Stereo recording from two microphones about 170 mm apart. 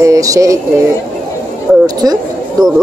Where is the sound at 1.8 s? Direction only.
25° right (ahead or behind).